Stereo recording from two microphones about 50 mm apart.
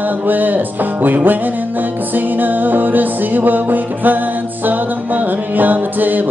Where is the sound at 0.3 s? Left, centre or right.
Right.